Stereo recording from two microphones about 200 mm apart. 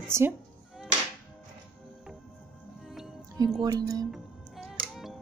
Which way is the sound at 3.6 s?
15° right (ahead or behind).